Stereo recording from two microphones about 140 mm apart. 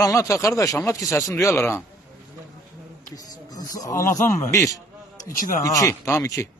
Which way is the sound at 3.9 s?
70° left (ahead or behind).